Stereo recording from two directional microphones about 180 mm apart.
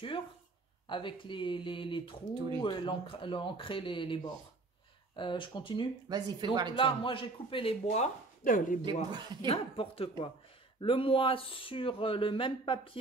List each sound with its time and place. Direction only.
0.8 s speech: 25° left (ahead or behind)
6.0 s speech: 25° right (ahead or behind)
6.7 s speech: 30° left (ahead or behind); by 8.7 s 50° left (ahead or behind)
8.8 s speech: 25° right (ahead or behind)
9.5 s speech: 30° left (ahead or behind)